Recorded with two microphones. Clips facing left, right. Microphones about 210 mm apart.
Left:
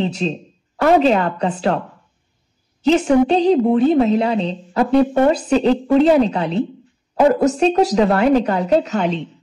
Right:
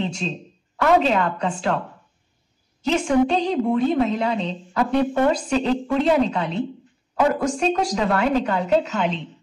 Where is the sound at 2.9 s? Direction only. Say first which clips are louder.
Left 5 dB; 35° left (ahead or behind).